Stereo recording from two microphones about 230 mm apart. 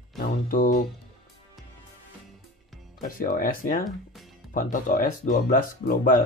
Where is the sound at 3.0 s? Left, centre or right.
Left.